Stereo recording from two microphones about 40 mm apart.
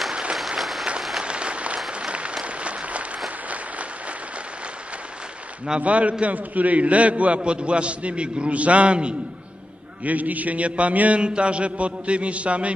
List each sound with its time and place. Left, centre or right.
0.1 s applause: right
0.6 s applause: centre
1.2 s applause: right
5.8 s a man's voice: right
10.0 s a man's voice: right